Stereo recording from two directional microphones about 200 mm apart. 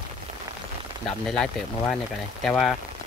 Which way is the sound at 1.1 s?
5° left (ahead or behind).